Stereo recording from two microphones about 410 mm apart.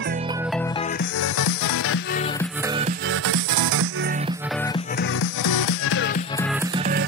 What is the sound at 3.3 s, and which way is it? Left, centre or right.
Music, right.